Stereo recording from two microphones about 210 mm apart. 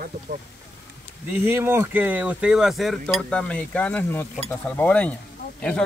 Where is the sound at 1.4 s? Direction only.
10° right (ahead or behind).